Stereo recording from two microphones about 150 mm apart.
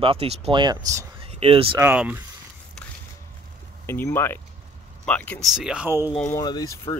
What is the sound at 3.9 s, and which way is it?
Speech, 15° left (ahead or behind).